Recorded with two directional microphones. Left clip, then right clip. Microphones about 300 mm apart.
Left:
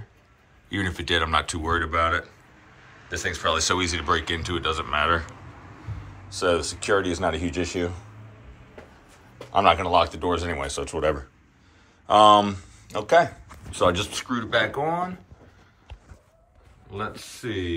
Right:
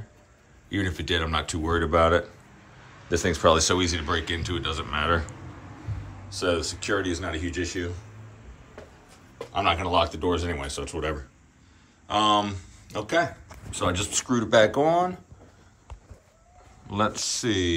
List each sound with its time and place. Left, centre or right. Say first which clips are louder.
0.7 s speech: left 2 dB; centre; by 3.5 s right
3.5 s speech: even; centre
9.5 s speech: left 5 dB; centre
14.1 s speech: right 3 dB; centre
16.9 s speech: right 7 dB; centre